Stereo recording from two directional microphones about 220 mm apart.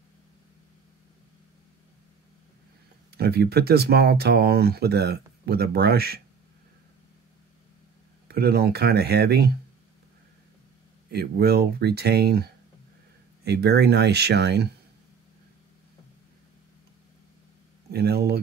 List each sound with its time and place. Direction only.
3.1 s speech: 45° right (ahead or behind)
8.3 s speech: 45° right (ahead or behind)
11.1 s speech: 45° right (ahead or behind)
17.9 s speech: 45° right (ahead or behind)